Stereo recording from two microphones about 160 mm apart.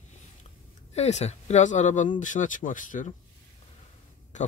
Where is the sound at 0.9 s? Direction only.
45° left (ahead or behind).